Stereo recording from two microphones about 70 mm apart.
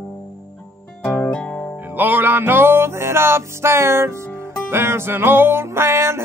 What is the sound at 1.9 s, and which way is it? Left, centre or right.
Music, right.